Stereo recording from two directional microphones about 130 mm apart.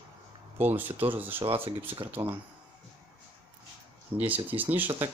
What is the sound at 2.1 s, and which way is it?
Speech, 15° right (ahead or behind).